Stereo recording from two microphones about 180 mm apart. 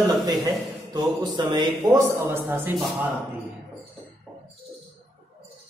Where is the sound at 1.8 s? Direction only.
15° right (ahead or behind).